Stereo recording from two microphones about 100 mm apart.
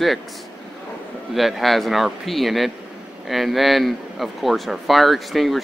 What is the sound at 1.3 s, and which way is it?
Speech, centre (ahead or behind).